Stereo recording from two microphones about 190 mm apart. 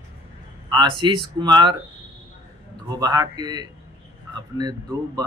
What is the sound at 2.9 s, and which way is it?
Speech, 20° right (ahead or behind).